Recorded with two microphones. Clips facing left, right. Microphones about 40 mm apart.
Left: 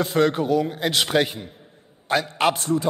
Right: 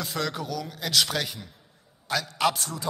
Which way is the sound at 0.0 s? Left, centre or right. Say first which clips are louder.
Left 10 dB; left.